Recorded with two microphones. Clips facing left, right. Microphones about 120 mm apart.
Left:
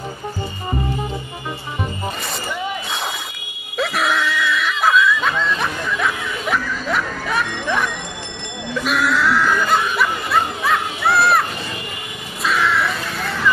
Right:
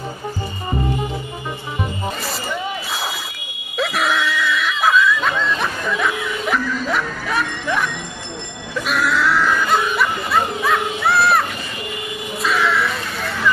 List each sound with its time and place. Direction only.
3.7 s a sound: centre (ahead or behind)
8.8 s snicker: centre (ahead or behind)
12.4 s music: centre (ahead or behind)